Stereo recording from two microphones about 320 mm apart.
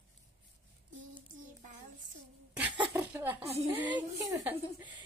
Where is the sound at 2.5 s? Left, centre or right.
Centre.